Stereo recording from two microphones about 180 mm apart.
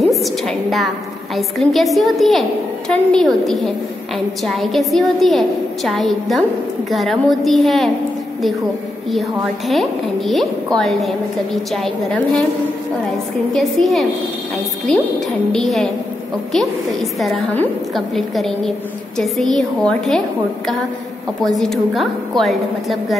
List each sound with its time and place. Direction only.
0.0 s a woman's voice: centre (ahead or behind)
9.7 s a woman's voice: centre (ahead or behind)
13.5 s a woman's voice: centre (ahead or behind)
17.2 s a woman's voice: centre (ahead or behind)
21.5 s a woman's voice: centre (ahead or behind)